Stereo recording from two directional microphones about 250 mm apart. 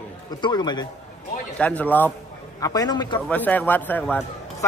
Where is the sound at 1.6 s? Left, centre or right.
Centre.